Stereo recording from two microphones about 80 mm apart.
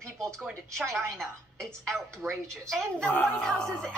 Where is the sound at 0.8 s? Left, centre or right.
Centre.